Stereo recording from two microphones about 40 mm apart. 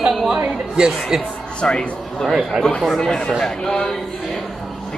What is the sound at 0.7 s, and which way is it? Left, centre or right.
Speech, centre.